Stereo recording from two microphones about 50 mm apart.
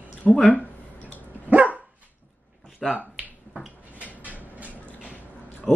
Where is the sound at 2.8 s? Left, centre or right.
Centre.